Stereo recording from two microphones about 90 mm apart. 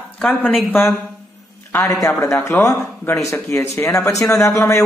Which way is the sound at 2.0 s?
30° left (ahead or behind).